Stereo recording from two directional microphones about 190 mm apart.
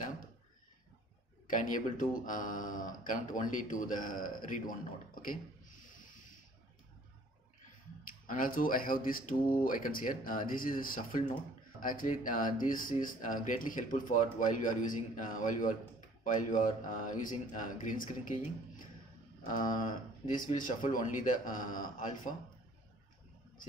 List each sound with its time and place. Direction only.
1.5 s speech: 45° left (ahead or behind)
5.9 s a sound: 45° left (ahead or behind)
8.3 s speech: 45° left (ahead or behind)
19.4 s speech: 45° left (ahead or behind)